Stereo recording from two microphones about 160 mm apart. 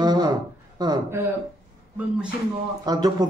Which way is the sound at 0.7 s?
25° right (ahead or behind).